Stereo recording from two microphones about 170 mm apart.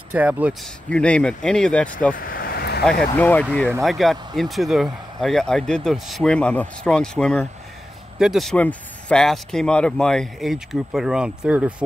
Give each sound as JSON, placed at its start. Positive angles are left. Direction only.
{"t": 0.1, "sound": "speech", "side_deg": -10}
{"t": 0.8, "sound": "speech", "side_deg": 5}
{"t": 2.1, "sound": "vehicle", "side_deg": 60}
{"t": 2.8, "sound": "speech", "side_deg": 5}